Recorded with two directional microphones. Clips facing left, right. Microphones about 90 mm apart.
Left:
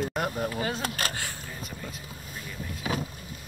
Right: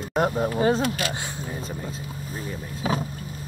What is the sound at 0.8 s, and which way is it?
Speech, 45° left (ahead or behind).